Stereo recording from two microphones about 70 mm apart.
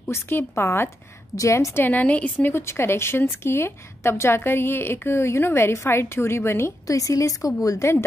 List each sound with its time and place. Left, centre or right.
0.1 s a woman's voice: left
1.3 s a woman's voice: left
1.9 s a woman's voice: left
2.5 s a woman's voice: left
6.9 s a woman's voice: left